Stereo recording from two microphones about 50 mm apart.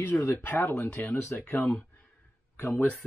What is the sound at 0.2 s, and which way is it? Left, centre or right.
Speech, left.